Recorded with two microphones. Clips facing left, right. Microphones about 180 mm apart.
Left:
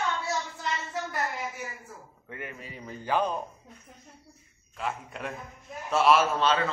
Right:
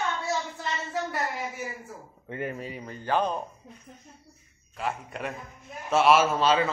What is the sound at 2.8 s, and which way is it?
Speech, 5° left (ahead or behind).